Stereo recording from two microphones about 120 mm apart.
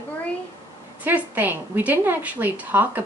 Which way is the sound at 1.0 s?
15° right (ahead or behind).